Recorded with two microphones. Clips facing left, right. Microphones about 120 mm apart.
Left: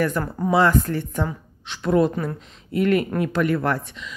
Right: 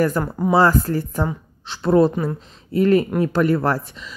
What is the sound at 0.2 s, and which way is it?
A woman's voice, 30° right (ahead or behind).